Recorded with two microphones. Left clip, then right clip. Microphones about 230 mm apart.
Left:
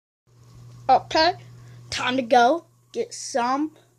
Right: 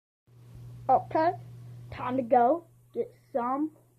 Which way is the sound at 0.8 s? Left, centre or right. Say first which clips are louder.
Left 6 dB; left.